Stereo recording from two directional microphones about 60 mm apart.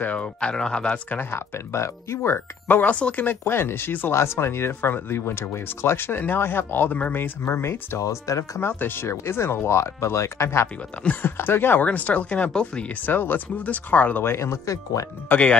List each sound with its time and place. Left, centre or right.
0.0 s speech: left
1.3 s speech: left
2.3 s speech: left
3.4 s speech: left
7.4 s speech: left
8.0 s speech: left
8.5 s speech: left
11.2 s speech: left
11.8 s speech: left
13.0 s speech: left
14.2 s speech: left
15.2 s speech: left